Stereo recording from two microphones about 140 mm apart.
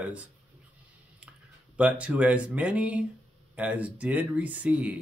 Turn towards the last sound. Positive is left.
turn(degrees=-10)  # may be behind; listen again after turning